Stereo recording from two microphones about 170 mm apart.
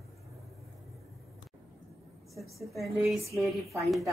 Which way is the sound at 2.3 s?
Centre (ahead or behind).